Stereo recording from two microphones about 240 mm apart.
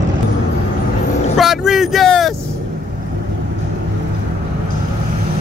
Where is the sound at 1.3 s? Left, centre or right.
Centre.